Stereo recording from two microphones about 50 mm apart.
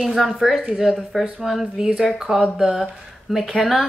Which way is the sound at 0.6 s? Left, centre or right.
Centre.